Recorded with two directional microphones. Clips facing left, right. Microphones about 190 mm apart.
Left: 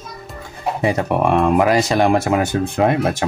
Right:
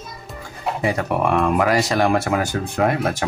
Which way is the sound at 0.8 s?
25° left (ahead or behind).